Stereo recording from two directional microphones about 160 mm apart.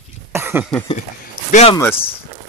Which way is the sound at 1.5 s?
45° left (ahead or behind).